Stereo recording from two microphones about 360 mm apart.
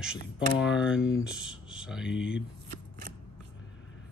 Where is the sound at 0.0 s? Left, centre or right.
Centre.